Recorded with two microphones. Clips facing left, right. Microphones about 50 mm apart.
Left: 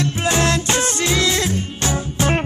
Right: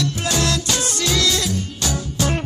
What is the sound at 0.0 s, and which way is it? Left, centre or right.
Music, left.